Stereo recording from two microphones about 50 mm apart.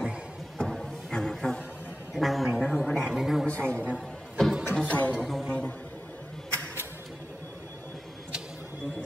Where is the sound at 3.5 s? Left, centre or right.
Left.